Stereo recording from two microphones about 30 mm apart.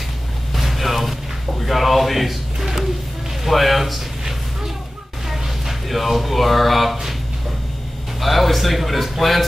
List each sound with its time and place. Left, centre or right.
0.6 s music: centre
1.6 s speech: centre
3.4 s speech: centre
5.3 s a sound: centre
8.2 s speech: centre